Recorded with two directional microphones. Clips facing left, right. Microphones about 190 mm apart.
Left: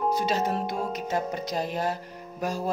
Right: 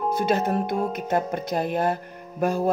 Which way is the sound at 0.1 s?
55° right (ahead or behind).